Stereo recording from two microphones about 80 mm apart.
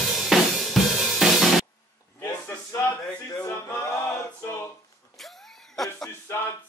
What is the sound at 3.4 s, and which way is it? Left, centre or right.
Music, left.